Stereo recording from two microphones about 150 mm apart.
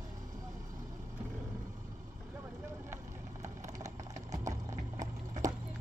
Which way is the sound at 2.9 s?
20° right (ahead or behind).